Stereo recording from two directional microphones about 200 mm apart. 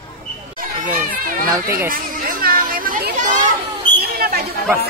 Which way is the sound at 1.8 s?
45° right (ahead or behind).